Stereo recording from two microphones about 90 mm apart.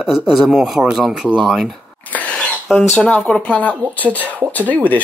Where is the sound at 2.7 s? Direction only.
10° left (ahead or behind).